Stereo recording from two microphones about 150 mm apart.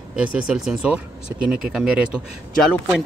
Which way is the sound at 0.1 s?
5° right (ahead or behind).